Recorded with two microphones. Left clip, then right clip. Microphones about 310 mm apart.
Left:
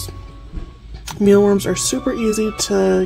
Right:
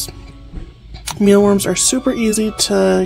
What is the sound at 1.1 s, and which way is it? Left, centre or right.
Speech, centre.